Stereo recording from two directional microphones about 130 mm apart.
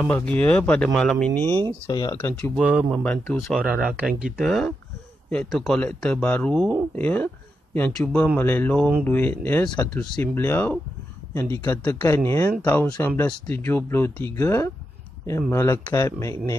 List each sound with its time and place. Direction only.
0.0 s speech: 15° left (ahead or behind)
0.8 s speech: centre (ahead or behind)
1.9 s speech: 30° left (ahead or behind)
2.1 s speech: 15° left (ahead or behind)
2.5 s speech: 5° right (ahead or behind); by 16.5 s 25° left (ahead or behind)